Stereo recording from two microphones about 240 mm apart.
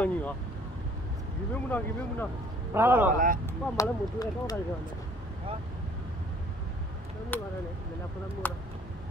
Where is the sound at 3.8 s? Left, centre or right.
Centre.